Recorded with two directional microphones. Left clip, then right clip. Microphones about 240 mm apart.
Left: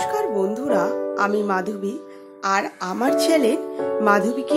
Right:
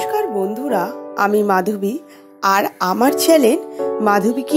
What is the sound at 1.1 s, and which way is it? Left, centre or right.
Speech, right.